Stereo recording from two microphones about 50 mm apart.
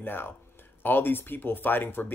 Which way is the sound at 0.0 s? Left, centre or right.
Left.